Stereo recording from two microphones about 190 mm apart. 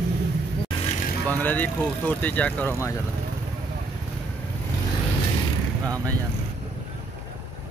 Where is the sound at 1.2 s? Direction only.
10° left (ahead or behind).